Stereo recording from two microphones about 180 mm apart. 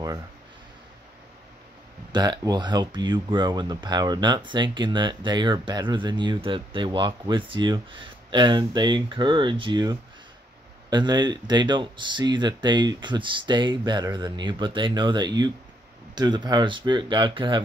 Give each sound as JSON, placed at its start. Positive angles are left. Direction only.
{"t": 2.1, "sound": "speech", "side_deg": -20}